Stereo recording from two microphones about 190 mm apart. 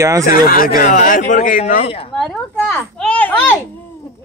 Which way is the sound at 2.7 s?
10° left (ahead or behind).